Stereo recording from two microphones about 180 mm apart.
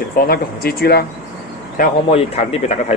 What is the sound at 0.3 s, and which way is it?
Speech, 60° left (ahead or behind).